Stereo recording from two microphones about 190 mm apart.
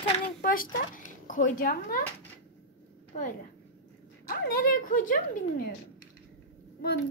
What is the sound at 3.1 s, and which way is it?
A woman's voice, 40° left (ahead or behind).